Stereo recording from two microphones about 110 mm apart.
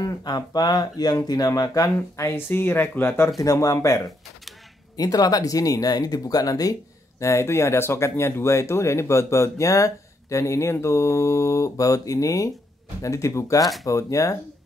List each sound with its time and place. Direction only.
0.0 s speech: 35° left (ahead or behind); by 3.3 s 20° left (ahead or behind)
3.3 s speech: 30° left (ahead or behind)